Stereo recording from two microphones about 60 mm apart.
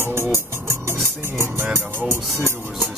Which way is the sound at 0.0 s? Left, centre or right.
Right.